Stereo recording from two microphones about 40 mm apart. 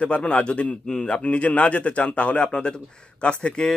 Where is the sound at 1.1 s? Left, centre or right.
Left.